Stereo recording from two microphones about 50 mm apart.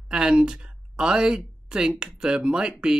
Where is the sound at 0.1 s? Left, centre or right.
Centre.